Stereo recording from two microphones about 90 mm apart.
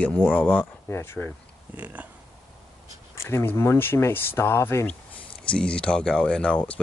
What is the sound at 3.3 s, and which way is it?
Speech, 25° left (ahead or behind).